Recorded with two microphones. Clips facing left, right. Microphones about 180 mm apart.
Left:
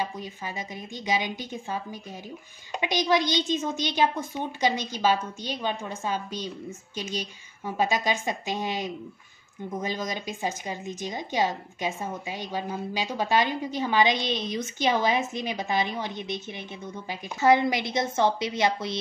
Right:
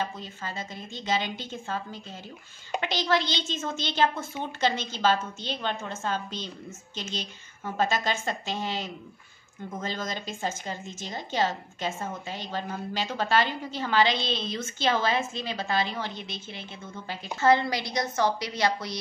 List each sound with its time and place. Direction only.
0.0 s speech: 15° left (ahead or behind)